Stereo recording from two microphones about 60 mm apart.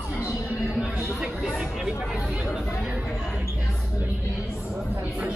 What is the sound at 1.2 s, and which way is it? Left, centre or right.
Speech, centre.